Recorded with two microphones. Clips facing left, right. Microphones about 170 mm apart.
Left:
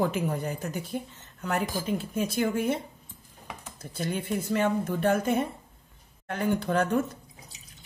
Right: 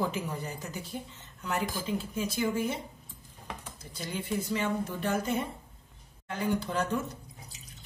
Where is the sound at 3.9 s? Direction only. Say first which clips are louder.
Left 4 dB; 55° left (ahead or behind).